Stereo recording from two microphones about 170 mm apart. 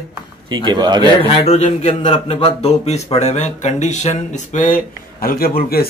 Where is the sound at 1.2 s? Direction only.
35° left (ahead or behind).